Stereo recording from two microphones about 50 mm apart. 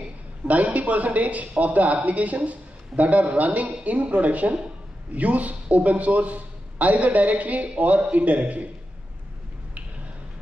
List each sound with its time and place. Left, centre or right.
0.5 s a woman's voice: right